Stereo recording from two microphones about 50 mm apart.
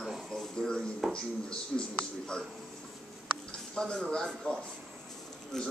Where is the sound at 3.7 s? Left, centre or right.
Centre.